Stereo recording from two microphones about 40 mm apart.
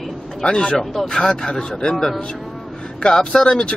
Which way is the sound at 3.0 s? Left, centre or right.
Left.